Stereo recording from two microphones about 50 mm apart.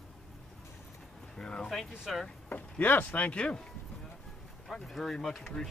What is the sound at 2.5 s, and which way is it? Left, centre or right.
Speech, left.